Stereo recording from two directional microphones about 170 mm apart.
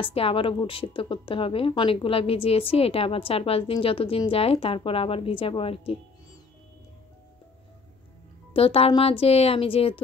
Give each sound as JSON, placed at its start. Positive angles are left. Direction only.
{"t": 0.0, "sound": "a woman's voice", "side_deg": 35}
{"t": 8.5, "sound": "a woman's voice", "side_deg": 35}